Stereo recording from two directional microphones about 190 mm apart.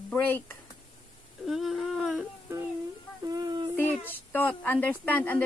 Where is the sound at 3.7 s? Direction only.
10° left (ahead or behind).